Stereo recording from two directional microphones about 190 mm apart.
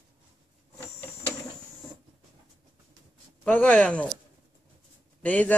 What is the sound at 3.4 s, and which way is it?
Speech, 5° left (ahead or behind).